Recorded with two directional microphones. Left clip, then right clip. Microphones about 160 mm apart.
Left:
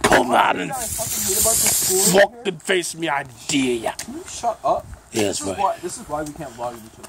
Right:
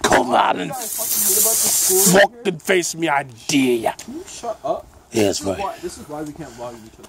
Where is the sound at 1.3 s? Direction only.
70° right (ahead or behind).